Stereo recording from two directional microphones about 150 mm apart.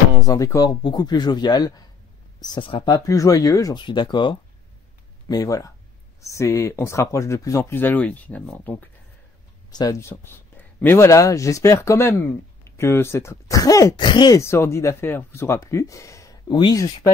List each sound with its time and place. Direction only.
0.2 s speech: 20° left (ahead or behind)
9.7 s speech: 25° left (ahead or behind)